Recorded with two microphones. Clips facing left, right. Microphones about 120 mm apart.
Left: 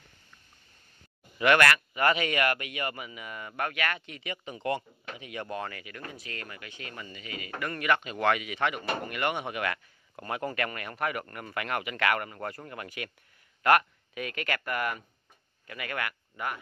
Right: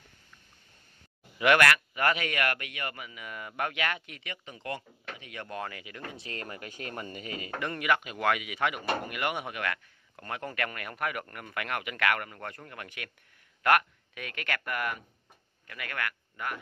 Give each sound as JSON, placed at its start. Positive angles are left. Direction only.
{"t": 1.4, "sound": "speech", "side_deg": -5}
{"t": 3.5, "sound": "speech", "side_deg": -15}
{"t": 4.1, "sound": "speech", "side_deg": 5}
{"t": 5.6, "sound": "speech", "side_deg": -10}
{"t": 6.2, "sound": "speech", "side_deg": -35}
{"t": 7.8, "sound": "speech", "side_deg": -10}
{"t": 9.5, "sound": "speech", "side_deg": 5}